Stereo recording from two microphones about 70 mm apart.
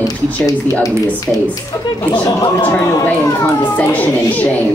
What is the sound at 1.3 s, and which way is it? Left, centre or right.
Speech, centre.